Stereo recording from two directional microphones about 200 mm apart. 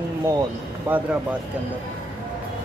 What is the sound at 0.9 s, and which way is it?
Speech, 10° right (ahead or behind).